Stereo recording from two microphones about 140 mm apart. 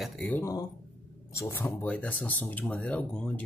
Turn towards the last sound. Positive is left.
turn(degrees=5)  # may be behind; listen again after turning